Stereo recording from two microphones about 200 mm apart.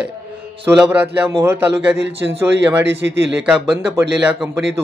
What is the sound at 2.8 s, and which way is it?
Speech, 60° right (ahead or behind).